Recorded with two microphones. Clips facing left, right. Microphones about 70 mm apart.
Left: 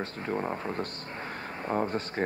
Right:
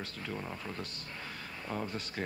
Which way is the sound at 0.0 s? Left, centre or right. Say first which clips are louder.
Left 9 dB; left.